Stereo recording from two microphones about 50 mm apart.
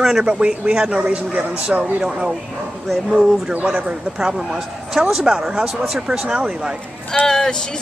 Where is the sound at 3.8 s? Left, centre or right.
Centre.